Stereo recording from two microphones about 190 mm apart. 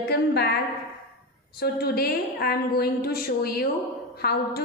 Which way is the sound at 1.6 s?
55° left (ahead or behind).